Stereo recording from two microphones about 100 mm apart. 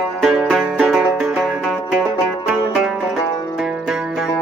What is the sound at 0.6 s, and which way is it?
Music, 10° right (ahead or behind).